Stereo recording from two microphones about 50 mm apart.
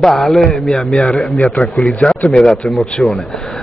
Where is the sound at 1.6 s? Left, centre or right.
Left.